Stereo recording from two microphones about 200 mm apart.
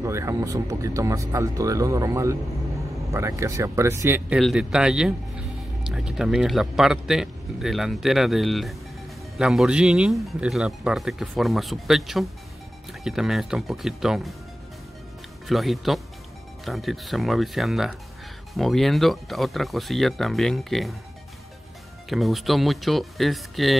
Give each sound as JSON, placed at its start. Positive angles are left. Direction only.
{"t": 0.0, "sound": "speech", "side_deg": -15}
{"t": 4.4, "sound": "speech", "side_deg": 0}
{"t": 15.4, "sound": "speech", "side_deg": 0}
{"t": 22.1, "sound": "speech", "side_deg": 0}